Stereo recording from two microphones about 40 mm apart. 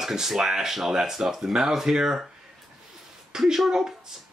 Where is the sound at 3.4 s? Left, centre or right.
Centre.